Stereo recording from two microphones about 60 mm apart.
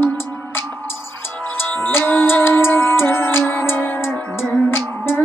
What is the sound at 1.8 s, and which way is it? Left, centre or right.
Music, left.